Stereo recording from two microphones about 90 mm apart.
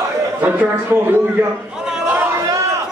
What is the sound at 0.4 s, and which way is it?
Speech, 20° right (ahead or behind).